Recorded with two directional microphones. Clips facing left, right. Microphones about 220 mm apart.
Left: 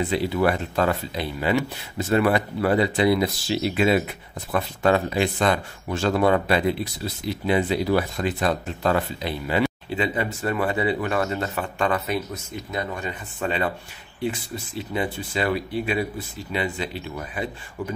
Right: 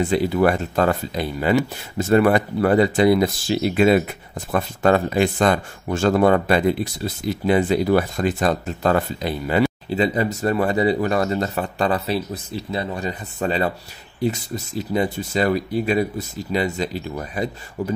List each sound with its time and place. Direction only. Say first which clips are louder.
0.0 s speech: right 4 dB; 45° right (ahead or behind)